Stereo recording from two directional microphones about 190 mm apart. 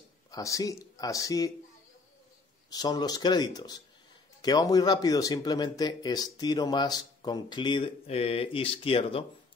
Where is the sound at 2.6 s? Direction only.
20° left (ahead or behind).